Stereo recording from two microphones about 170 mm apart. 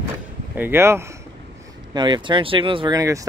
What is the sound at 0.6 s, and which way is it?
Speech, 15° right (ahead or behind).